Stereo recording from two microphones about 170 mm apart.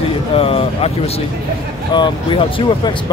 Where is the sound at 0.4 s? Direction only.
35° left (ahead or behind).